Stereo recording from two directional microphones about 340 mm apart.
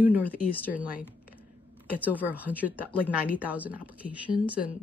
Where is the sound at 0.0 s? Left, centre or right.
Centre.